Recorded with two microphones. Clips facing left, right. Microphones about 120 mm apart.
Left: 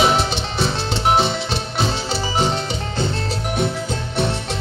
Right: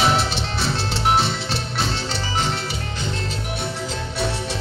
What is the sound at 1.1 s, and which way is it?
Music, centre (ahead or behind).